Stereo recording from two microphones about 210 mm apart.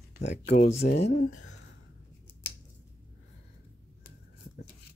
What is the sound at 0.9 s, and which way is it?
Speech, 30° left (ahead or behind).